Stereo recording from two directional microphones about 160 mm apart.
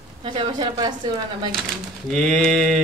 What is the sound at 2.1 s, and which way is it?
Speech, 5° left (ahead or behind).